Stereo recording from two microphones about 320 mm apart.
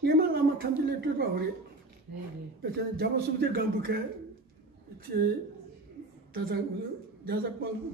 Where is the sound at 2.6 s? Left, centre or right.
Right.